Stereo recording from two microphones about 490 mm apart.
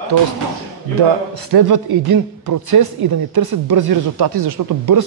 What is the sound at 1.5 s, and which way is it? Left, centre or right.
Speech, right.